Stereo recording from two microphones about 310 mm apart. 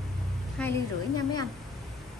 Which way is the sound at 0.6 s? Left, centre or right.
Centre.